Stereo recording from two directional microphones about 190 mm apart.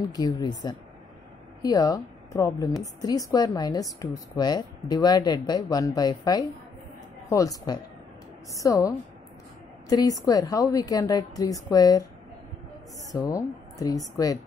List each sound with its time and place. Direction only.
0.1 s a woman's voice: 20° left (ahead or behind)
1.6 s a woman's voice: 20° left (ahead or behind)
13.1 s speech: 15° left (ahead or behind)